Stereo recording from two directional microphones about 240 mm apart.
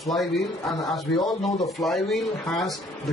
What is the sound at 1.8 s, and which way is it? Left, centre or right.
Speech, centre.